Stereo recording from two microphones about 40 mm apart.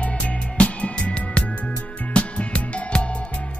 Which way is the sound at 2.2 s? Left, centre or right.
Left.